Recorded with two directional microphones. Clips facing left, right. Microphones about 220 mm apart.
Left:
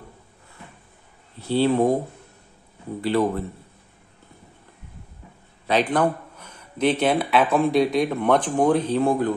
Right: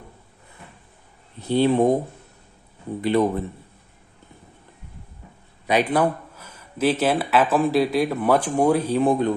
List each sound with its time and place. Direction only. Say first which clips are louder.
1.4 s speech: right 1 dB; 15° right (ahead or behind)
3.0 s a man's voice: right 1 dB; 20° right (ahead or behind)
5.7 s speech: right 1 dB; 10° right (ahead or behind)